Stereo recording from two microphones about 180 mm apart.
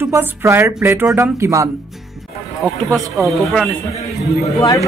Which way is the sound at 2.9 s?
Centre (ahead or behind).